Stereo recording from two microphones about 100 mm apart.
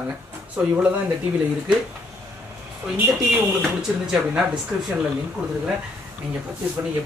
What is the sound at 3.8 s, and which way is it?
Speech, 5° right (ahead or behind).